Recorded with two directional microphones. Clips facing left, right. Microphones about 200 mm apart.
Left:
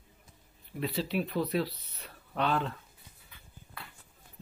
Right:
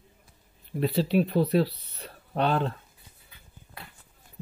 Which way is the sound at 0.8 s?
30° right (ahead or behind).